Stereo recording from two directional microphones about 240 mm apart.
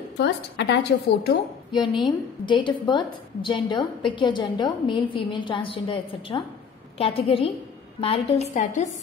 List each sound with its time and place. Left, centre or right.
0.2 s a woman's voice: left
1.7 s a woman's voice: centre